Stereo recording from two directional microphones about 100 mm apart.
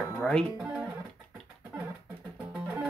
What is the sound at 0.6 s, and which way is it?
Speech, 10° right (ahead or behind).